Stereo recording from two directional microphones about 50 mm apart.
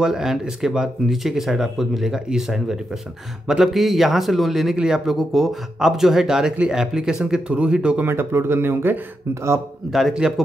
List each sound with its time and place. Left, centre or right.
0.0 s a man's voice: centre
8.1 s speech: right
9.3 s a man's voice: right
10.2 s speech: centre